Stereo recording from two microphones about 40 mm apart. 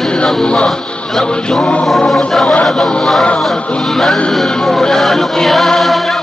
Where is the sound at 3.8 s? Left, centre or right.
Centre.